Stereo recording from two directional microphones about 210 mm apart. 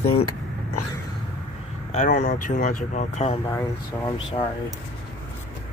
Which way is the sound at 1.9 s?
35° left (ahead or behind).